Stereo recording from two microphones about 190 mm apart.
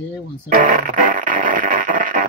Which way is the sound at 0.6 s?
45° right (ahead or behind).